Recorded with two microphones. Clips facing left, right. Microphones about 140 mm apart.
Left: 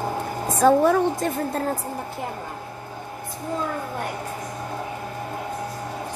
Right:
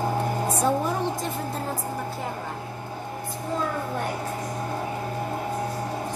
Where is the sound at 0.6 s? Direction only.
70° left (ahead or behind).